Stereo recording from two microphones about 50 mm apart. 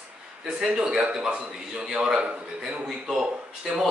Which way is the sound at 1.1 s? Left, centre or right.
Centre.